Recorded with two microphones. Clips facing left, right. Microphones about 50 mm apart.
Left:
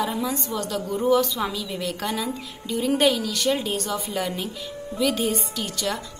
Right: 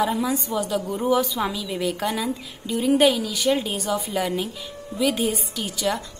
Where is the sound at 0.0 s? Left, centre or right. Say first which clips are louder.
Right 3 dB; centre.